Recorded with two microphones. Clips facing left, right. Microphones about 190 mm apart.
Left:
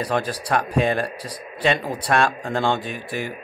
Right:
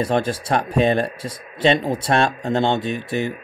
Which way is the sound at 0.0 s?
25° right (ahead or behind).